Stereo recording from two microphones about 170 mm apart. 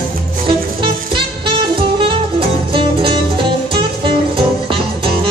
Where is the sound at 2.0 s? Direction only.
30° right (ahead or behind).